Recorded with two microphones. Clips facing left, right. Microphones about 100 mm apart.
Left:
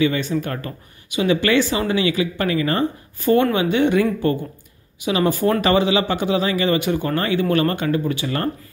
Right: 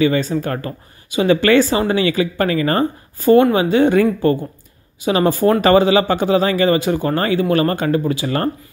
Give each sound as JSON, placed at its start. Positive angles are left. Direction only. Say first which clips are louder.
{"t": 0.0, "sound": "speech", "louder": "right 3 dB", "side_deg": -40}
{"t": 1.1, "sound": "speech", "louder": "right 5 dB", "side_deg": -50}
{"t": 3.3, "sound": "speech", "louder": "right 5 dB", "side_deg": -30}
{"t": 5.0, "sound": "speech", "louder": "right 4 dB", "side_deg": -45}